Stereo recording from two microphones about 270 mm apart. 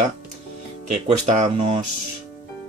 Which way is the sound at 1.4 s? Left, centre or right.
Right.